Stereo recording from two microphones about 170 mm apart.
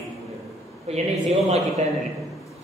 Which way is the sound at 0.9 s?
35° right (ahead or behind).